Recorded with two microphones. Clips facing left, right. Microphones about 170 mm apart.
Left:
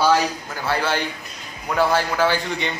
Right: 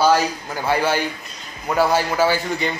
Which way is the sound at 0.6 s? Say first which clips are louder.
Right 3 dB; 15° right (ahead or behind).